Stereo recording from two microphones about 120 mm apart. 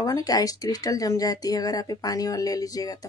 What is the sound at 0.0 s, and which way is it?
Speech, 30° left (ahead or behind).